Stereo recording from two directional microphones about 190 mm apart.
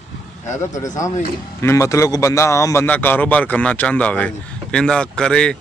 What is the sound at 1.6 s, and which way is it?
A man's voice, 15° left (ahead or behind).